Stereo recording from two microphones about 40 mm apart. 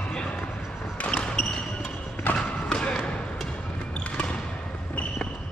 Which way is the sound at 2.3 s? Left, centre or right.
Left.